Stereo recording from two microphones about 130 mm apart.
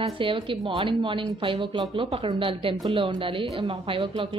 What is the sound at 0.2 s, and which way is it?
Speech, 40° right (ahead or behind).